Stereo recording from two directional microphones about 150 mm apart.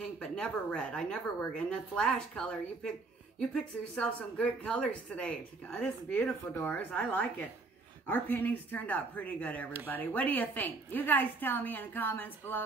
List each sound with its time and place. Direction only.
0.2 s speech: 5° left (ahead or behind)